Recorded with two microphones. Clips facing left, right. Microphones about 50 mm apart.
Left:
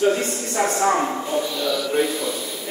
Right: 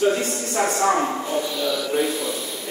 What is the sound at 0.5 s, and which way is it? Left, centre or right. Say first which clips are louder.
Speech: even; centre.